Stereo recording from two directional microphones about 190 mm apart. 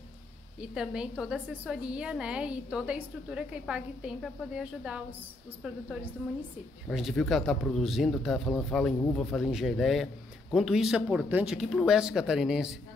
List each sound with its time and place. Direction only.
0.6 s a woman's voice: 5° right (ahead or behind)
6.9 s a woman's voice: centre (ahead or behind)